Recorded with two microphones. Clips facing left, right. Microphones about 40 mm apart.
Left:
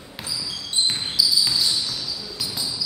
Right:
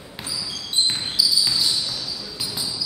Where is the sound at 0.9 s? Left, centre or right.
Centre.